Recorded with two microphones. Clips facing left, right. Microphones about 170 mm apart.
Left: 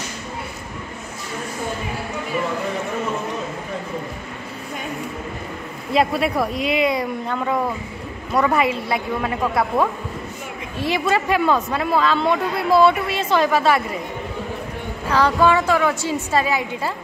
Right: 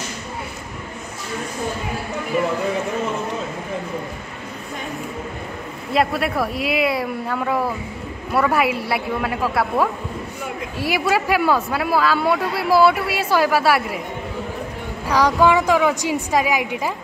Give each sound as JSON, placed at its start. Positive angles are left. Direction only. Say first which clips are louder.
{"t": 5.9, "sound": "speech", "louder": "left 1 dB", "side_deg": 0}
{"t": 15.0, "sound": "speech", "louder": "right 1 dB", "side_deg": -15}